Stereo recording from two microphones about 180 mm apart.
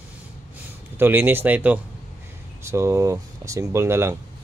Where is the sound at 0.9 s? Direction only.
10° right (ahead or behind).